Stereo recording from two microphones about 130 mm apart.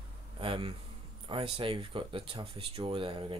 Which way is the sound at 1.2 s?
45° right (ahead or behind).